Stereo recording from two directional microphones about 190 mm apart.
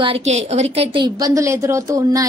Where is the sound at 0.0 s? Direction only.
35° right (ahead or behind).